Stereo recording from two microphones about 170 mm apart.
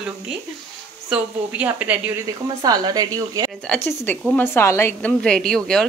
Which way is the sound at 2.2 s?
25° right (ahead or behind).